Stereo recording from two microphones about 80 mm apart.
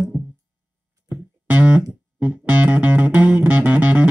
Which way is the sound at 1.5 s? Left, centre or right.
Centre.